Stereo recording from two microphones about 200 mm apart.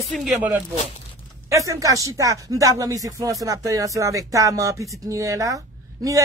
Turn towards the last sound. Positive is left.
turn(degrees=-15)  # may be behind; listen again after turning